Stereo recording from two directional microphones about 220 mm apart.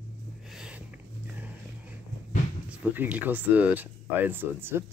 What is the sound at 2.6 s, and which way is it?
Speech, 5° right (ahead or behind).